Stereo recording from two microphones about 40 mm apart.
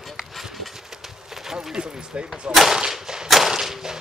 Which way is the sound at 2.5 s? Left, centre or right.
Centre.